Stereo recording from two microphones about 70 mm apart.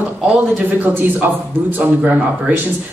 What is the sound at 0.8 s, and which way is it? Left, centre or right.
A woman's voice, right.